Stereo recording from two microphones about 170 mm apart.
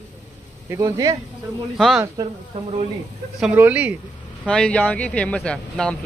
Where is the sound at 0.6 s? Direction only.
20° right (ahead or behind).